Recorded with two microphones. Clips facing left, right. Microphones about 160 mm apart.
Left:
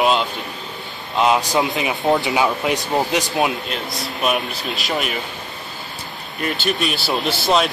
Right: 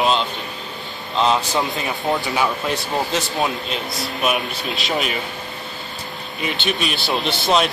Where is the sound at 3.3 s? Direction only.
Centre (ahead or behind).